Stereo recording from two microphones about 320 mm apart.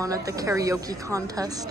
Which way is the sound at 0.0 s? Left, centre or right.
Centre.